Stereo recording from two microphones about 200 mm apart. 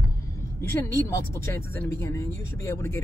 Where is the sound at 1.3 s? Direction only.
10° left (ahead or behind).